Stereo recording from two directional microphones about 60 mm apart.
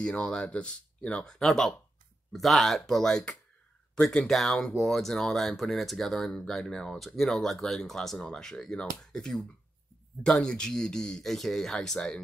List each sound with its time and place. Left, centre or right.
0.0 s speech: centre
10.4 s speech: centre